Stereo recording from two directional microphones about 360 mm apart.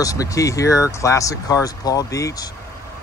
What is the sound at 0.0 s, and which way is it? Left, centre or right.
Speech, centre.